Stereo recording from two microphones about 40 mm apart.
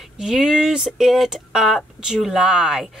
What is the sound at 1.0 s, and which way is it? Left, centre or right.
Speech, centre.